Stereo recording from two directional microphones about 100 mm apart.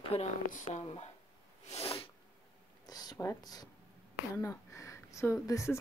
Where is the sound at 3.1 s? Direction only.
35° left (ahead or behind).